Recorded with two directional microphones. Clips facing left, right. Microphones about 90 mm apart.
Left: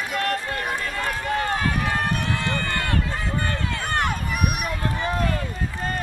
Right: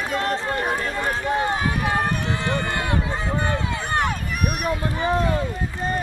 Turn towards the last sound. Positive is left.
turn(degrees=-20)  # may be behind; listen again after turning